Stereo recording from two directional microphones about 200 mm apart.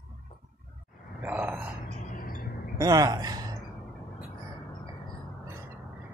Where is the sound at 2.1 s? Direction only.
45° left (ahead or behind).